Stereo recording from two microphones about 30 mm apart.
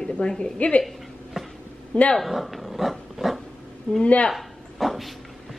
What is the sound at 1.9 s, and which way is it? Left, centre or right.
Speech, left.